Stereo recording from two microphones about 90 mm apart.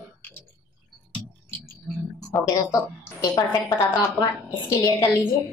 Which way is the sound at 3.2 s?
40° left (ahead or behind).